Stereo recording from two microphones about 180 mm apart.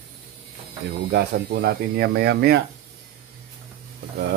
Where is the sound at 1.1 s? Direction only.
65° right (ahead or behind).